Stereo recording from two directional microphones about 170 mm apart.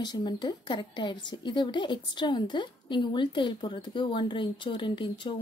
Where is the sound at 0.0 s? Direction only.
25° left (ahead or behind).